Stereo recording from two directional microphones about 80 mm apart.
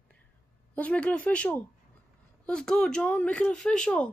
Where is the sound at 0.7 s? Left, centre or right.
Centre.